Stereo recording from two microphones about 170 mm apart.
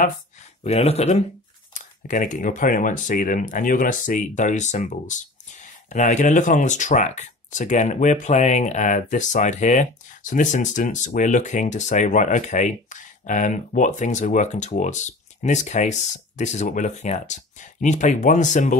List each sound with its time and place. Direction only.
0.7 s speech: 40° left (ahead or behind)